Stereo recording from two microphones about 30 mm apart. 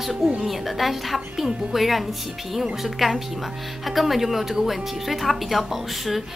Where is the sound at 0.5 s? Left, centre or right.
Centre.